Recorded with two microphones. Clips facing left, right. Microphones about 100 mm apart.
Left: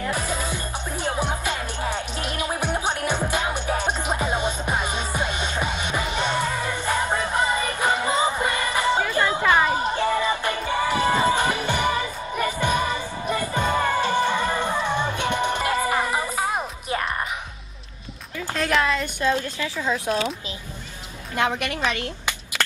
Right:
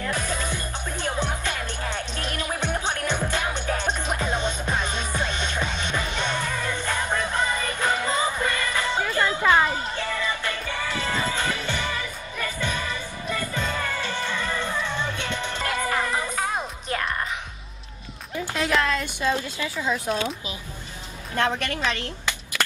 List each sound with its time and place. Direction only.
0.0 s music: 15° left (ahead or behind)
9.8 s music: 30° left (ahead or behind)
10.9 s music: 20° left (ahead or behind)
11.9 s music: 30° left (ahead or behind)
12.5 s music: 20° left (ahead or behind)
12.8 s music: 30° left (ahead or behind)
13.4 s music: 50° left (ahead or behind)
15.1 s music: 15° left (ahead or behind)
18.8 s speech: 5° left (ahead or behind)
19.1 s speech: 10° right (ahead or behind)
21.4 s speech: 15° left (ahead or behind)